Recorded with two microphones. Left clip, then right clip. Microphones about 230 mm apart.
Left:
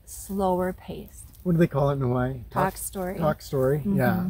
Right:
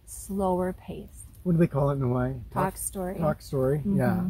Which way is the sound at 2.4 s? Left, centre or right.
Centre.